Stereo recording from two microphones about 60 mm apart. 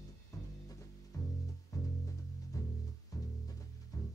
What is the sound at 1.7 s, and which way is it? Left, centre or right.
Music, left.